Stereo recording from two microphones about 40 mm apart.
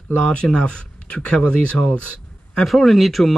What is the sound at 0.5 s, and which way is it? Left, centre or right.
Speech, left.